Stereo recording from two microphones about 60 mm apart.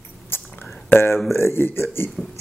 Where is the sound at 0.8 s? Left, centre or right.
Left.